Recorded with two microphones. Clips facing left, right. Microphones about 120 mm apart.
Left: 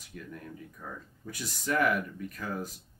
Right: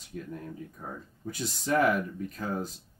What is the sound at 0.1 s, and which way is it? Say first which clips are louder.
Speech: right 4 dB; 35° right (ahead or behind).